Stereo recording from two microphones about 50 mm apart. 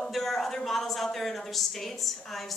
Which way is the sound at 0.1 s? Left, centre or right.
Centre.